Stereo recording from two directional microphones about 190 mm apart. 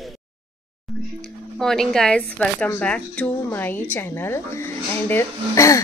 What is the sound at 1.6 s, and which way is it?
Speech, centre (ahead or behind).